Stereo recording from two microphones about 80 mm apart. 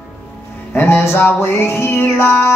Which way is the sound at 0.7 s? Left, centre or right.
Left.